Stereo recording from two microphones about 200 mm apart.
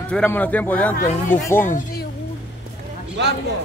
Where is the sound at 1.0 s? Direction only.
40° left (ahead or behind).